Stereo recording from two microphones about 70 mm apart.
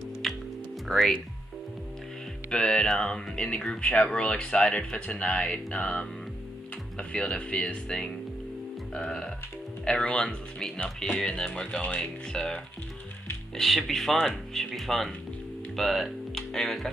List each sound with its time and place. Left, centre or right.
0.2 s music: centre
0.8 s speech: centre
2.5 s speech: centre
13.6 s speech: centre